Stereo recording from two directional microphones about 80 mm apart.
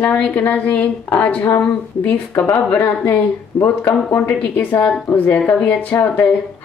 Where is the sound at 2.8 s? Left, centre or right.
Left.